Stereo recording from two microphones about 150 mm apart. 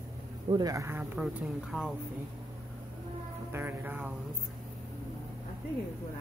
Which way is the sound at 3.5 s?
15° right (ahead or behind).